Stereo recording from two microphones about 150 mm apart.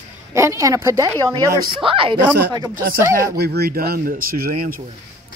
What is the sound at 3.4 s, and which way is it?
Speech, 90° right.